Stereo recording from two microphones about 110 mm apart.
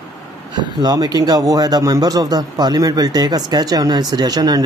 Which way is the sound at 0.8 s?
35° right (ahead or behind).